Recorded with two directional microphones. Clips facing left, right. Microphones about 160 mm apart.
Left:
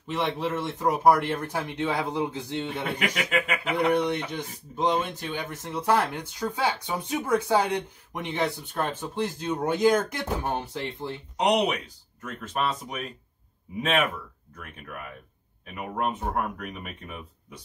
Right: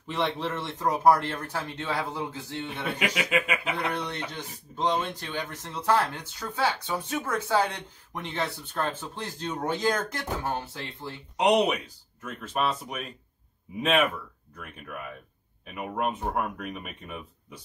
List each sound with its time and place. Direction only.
0.1 s speech: 10° left (ahead or behind)
3.0 s speech: 10° right (ahead or behind)
3.9 s speech: 15° left (ahead or behind)
11.3 s speech: centre (ahead or behind)
15.6 s speech: centre (ahead or behind)